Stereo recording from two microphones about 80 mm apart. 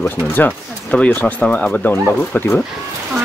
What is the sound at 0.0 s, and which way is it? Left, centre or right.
Speech, left.